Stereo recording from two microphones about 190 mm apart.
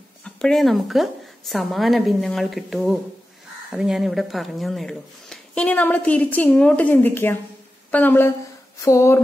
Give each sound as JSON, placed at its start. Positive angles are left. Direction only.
{"t": 0.2, "sound": "a woman's voice", "side_deg": 5}